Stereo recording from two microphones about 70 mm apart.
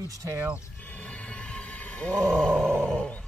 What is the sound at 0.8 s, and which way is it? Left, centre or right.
Roar, left.